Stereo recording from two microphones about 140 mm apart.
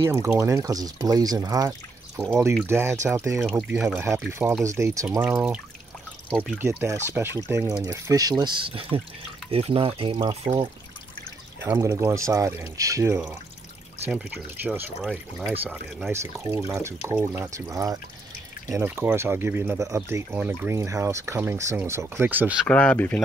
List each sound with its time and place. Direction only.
0.0 s speech: 20° right (ahead or behind)
2.2 s speech: 5° left (ahead or behind)
2.6 s speech: 15° right (ahead or behind)
3.4 s speech: centre (ahead or behind)
3.8 s speech: 20° right (ahead or behind)
6.8 s speech: 20° right (ahead or behind); by 10.5 s 40° right (ahead or behind)
11.6 s speech: 20° right (ahead or behind)
22.7 s speech: 10° left (ahead or behind)